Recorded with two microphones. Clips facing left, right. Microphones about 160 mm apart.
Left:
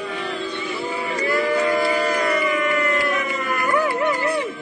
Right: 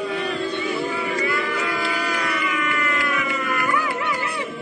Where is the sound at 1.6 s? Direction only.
40° left (ahead or behind).